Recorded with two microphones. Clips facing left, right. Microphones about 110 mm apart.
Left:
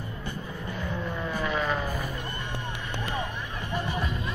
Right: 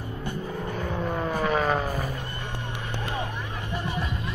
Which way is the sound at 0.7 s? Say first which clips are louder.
Right 3 dB; 50° right (ahead or behind).